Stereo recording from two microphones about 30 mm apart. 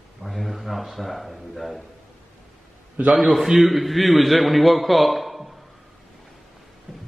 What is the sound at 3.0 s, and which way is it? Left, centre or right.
Speech, right.